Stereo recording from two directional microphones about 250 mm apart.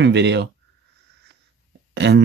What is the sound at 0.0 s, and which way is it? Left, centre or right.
Speech, right.